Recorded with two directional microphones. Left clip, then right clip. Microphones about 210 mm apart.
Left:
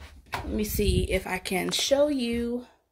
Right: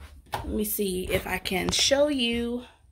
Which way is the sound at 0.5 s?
5° right (ahead or behind).